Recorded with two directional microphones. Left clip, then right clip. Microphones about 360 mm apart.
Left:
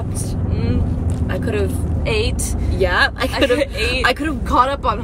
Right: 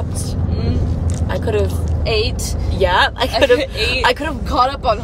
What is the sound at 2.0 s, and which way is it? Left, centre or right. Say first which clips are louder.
Speech: right 2 dB; left.